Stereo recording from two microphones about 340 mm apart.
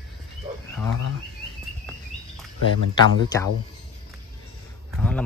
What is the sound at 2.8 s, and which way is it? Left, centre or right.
Speech, right.